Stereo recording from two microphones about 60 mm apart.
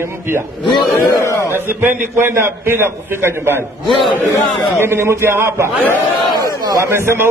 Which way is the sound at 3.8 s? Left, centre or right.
Centre.